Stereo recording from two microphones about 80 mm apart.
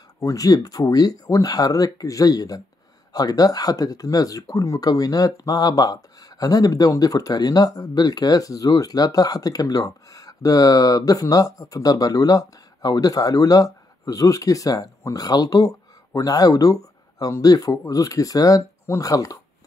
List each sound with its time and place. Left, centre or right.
0.2 s speech: left